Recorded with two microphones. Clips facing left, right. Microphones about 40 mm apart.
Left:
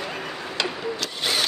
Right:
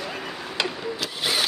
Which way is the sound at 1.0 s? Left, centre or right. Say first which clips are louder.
Right 1 dB; centre.